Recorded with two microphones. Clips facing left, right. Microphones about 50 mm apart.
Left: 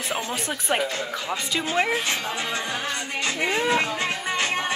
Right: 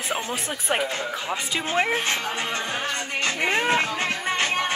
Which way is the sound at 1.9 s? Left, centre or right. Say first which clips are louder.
Right 1 dB; right.